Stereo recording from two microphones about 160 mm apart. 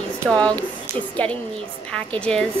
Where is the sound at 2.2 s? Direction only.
5° left (ahead or behind).